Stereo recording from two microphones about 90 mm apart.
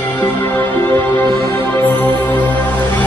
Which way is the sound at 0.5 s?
20° left (ahead or behind).